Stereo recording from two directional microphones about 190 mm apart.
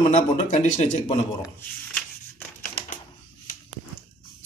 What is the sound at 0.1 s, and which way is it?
Speech, 40° left (ahead or behind).